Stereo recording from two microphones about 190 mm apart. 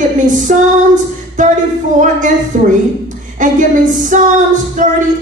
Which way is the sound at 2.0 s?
40° right (ahead or behind).